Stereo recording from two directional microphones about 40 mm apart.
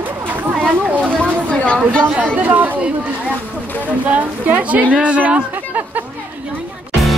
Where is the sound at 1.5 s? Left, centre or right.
Left.